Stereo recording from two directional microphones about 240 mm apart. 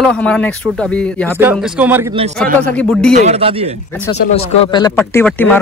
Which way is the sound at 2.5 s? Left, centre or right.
Centre.